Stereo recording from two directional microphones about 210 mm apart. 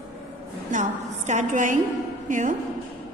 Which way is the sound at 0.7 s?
35° right (ahead or behind).